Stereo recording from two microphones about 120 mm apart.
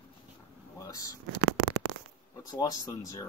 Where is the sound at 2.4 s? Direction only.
30° left (ahead or behind).